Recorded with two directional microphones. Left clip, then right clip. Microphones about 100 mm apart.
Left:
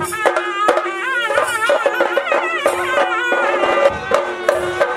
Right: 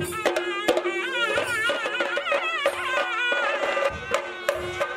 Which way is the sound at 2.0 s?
45° right (ahead or behind).